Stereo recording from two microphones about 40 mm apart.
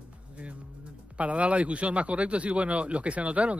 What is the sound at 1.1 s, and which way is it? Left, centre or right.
Speech, right.